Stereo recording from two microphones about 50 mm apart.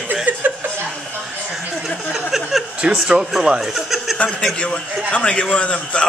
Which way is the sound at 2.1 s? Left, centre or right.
Centre.